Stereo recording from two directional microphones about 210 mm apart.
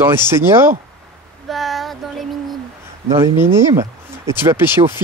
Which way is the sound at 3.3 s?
10° right (ahead or behind).